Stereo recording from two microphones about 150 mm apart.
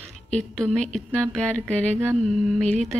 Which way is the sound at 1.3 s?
5° left (ahead or behind).